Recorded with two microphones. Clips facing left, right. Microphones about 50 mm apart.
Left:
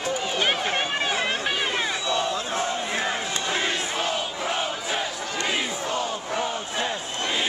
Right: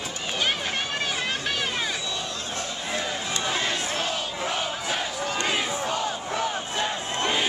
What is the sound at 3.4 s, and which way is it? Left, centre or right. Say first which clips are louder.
Battle cry: even; centre.